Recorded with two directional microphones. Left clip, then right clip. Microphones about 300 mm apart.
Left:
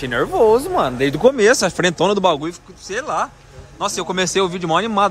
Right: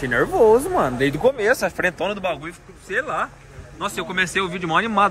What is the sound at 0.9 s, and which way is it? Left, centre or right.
Speech, left.